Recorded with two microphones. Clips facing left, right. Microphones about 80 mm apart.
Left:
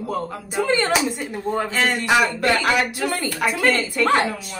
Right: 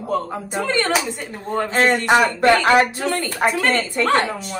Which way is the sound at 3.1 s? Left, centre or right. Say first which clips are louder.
Right 3 dB; centre.